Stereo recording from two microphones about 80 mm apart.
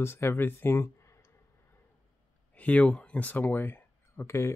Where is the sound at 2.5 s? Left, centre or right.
Centre.